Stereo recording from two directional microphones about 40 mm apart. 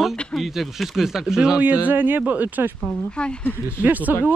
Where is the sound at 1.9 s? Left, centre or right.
Right.